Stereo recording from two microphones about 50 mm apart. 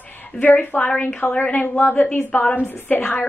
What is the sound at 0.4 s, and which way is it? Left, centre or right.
A woman's voice, left.